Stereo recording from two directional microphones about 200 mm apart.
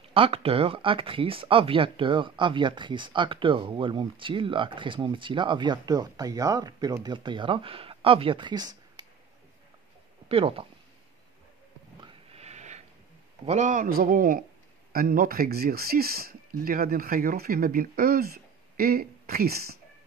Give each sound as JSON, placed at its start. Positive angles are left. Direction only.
{"t": 0.1, "sound": "speech", "side_deg": -30}
{"t": 10.2, "sound": "speech", "side_deg": -30}
{"t": 12.0, "sound": "sniff", "side_deg": -30}
{"t": 13.5, "sound": "speech", "side_deg": -35}